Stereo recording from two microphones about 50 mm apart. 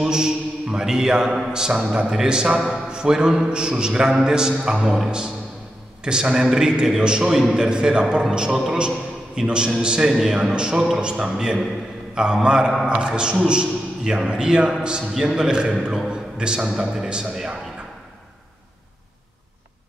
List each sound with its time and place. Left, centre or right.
0.0 s a man's voice: centre
6.0 s a man's voice: centre
10.4 s a man's voice: centre